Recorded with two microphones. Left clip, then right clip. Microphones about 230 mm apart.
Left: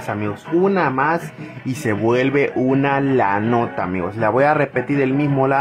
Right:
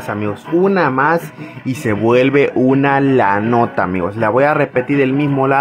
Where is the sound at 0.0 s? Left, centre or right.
Centre.